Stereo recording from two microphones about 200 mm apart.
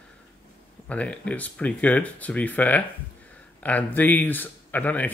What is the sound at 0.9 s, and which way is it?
Speech, 5° left (ahead or behind).